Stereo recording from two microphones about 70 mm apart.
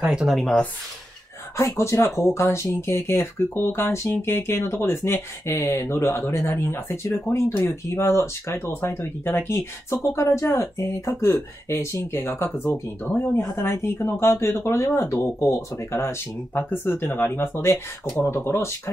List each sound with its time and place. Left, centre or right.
0.0 s speech: centre
1.6 s speech: left
16.5 s speech: left